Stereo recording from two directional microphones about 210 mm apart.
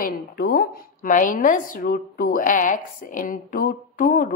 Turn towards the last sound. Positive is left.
turn(degrees=40)  # may be behind; listen again after turning